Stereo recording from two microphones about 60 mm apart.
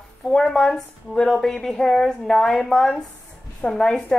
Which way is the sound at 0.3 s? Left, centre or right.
Centre.